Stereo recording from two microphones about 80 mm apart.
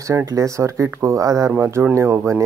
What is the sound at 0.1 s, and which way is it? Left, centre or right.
Speech, right.